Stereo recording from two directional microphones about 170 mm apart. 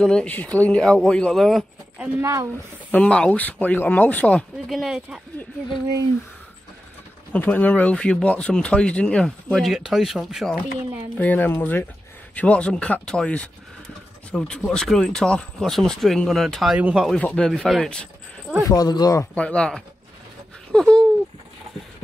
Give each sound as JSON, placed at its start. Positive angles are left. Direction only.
{"t": 0.0, "sound": "speech", "side_deg": 5}
{"t": 2.1, "sound": "a woman's voice", "side_deg": -15}
{"t": 2.9, "sound": "speech", "side_deg": 5}
{"t": 7.3, "sound": "speech", "side_deg": 10}
{"t": 18.7, "sound": "speech", "side_deg": 20}
{"t": 19.3, "sound": "speech", "side_deg": 5}